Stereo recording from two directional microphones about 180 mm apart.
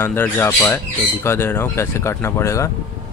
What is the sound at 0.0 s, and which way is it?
Speech, 15° left (ahead or behind).